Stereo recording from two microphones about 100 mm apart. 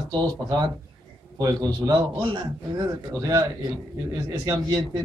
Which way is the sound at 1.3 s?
35° right (ahead or behind).